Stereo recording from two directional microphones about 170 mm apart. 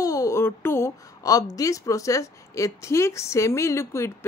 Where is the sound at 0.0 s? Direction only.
20° left (ahead or behind).